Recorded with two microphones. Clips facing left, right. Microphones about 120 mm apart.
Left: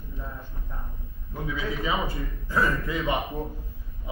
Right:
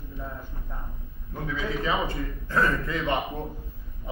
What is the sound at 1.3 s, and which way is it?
A man's voice, 10° left (ahead or behind).